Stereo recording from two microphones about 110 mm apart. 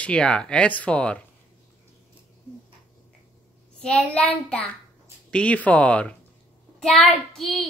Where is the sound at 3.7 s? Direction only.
10° left (ahead or behind).